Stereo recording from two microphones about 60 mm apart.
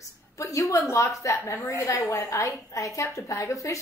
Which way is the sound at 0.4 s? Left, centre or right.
Left.